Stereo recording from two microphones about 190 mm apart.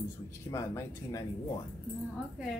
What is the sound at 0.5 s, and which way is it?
Speech, 15° left (ahead or behind).